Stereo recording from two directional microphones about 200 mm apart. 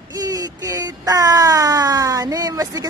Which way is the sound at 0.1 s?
20° right (ahead or behind).